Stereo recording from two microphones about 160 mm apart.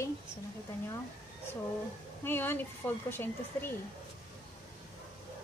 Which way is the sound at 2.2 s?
15° left (ahead or behind).